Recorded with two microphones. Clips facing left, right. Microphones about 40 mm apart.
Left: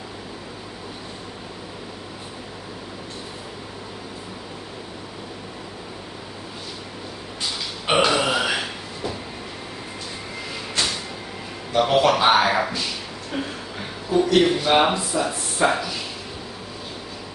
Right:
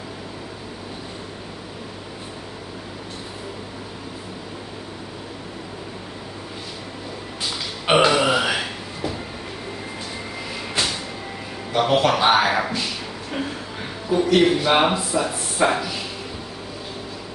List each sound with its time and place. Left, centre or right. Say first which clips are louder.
7.4 s burping: right 2 dB; centre
10.8 s music: right 1 dB; centre
11.8 s a sound: even; centre